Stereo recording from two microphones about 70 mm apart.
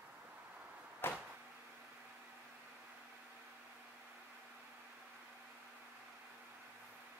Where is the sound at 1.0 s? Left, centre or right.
Left.